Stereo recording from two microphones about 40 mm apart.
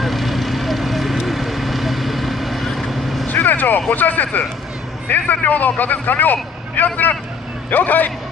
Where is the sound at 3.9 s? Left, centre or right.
Left.